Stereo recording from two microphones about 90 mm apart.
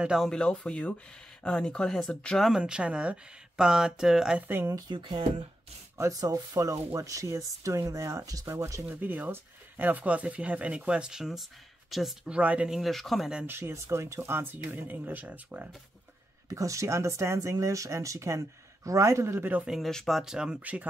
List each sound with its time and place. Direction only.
0.0 s speech: 5° right (ahead or behind)
0.3 s speech: 10° left (ahead or behind)
2.5 s speech: 10° right (ahead or behind)
4.5 s speech: 25° right (ahead or behind)
4.9 s speech: 60° right (ahead or behind)
5.9 s speech: 40° right (ahead or behind)
8.8 s speech: 20° right (ahead or behind); by 12.4 s centre (ahead or behind)
12.4 s speech: 15° right (ahead or behind); by 13.3 s centre (ahead or behind)
13.5 s speech: 25° right (ahead or behind)
16.4 s speech: 35° right (ahead or behind)
19.6 s speech: centre (ahead or behind)